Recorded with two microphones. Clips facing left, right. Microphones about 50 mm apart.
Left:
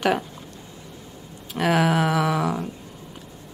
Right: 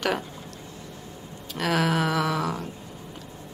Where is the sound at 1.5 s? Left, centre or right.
Centre.